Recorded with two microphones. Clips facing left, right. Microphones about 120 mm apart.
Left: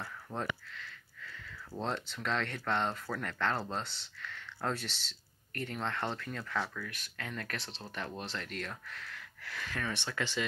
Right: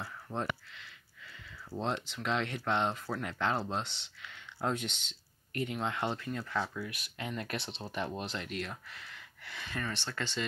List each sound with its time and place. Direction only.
0.0 s a sound: 5° right (ahead or behind)
1.8 s speech: centre (ahead or behind)
8.3 s speech: 5° right (ahead or behind)